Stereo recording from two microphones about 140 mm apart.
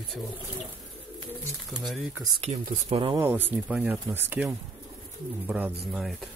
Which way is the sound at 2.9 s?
40° right (ahead or behind).